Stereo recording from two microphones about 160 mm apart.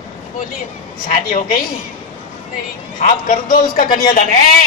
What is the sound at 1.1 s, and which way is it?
Speech, 60° left (ahead or behind).